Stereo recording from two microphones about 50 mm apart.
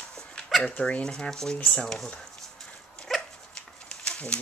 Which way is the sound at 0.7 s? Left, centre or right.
Left.